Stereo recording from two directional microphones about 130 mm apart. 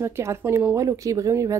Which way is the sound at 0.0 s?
20° right (ahead or behind).